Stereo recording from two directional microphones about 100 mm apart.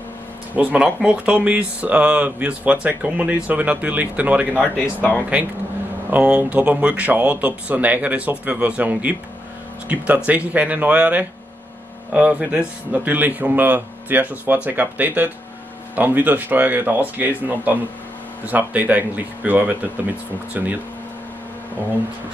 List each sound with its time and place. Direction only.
0.6 s speech: 15° right (ahead or behind)
4.6 s speech: 15° left (ahead or behind)
5.3 s speech: 10° right (ahead or behind)